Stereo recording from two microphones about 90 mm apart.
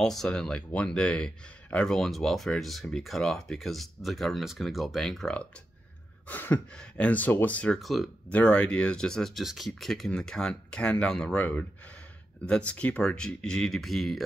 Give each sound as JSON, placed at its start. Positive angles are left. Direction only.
{"t": 0.0, "sound": "speech", "side_deg": 5}
{"t": 6.2, "sound": "speech", "side_deg": 20}
{"t": 7.8, "sound": "speech", "side_deg": 0}
{"t": 8.3, "sound": "speech", "side_deg": 15}